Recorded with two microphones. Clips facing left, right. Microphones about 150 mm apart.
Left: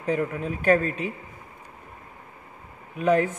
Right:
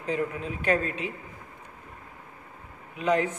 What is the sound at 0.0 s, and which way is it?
Speech, 55° left (ahead or behind).